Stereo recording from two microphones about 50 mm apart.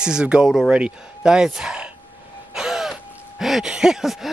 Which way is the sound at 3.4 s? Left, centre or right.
Centre.